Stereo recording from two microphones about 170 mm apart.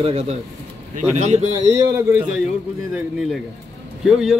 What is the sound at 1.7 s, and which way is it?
Speech, 15° right (ahead or behind).